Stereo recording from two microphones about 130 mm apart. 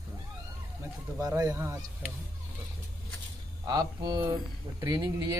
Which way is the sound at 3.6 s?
30° right (ahead or behind).